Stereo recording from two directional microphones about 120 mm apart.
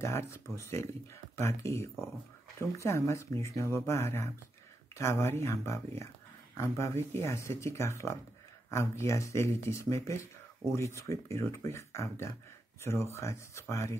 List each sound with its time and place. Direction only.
0.0 s speech: 25° left (ahead or behind)